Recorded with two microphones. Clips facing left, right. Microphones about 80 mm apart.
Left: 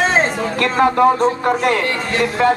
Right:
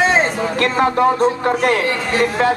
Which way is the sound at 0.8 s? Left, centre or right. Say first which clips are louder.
Left 2 dB; left.